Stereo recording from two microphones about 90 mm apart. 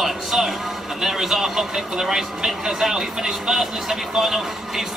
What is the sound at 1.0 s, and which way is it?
Speech, 5° right (ahead or behind).